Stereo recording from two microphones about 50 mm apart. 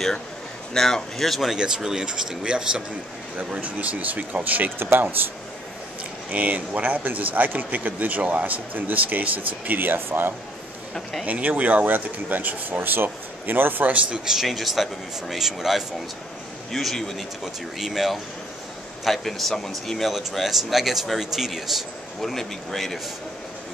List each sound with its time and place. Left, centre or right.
0.7 s speech: centre
1.5 s speech: centre
3.6 s speech: right
4.7 s speech: right
6.3 s speech: right
11.2 s speech: right
14.1 s speech: centre